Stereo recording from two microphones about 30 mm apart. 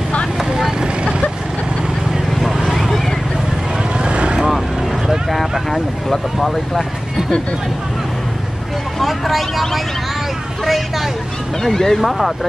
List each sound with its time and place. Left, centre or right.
0.6 s vehicle: centre
2.3 s clip-clop: centre
4.0 s vehicle: right
5.3 s vehicle: centre
5.7 s speech: centre
9.0 s speech: centre
11.6 s speech: centre
12.0 s speech: centre